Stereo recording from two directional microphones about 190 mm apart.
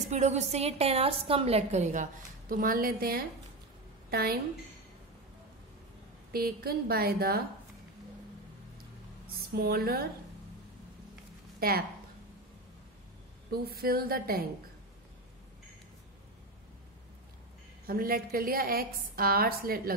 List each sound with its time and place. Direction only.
0.1 s a woman's voice: 35° right (ahead or behind); by 4.4 s 55° right (ahead or behind)
6.3 s a woman's voice: 50° right (ahead or behind)
9.6 s a woman's voice: 55° right (ahead or behind)
11.6 s a woman's voice: 50° right (ahead or behind)
13.5 s a woman's voice: 55° right (ahead or behind)
17.8 s a woman's voice: 50° right (ahead or behind)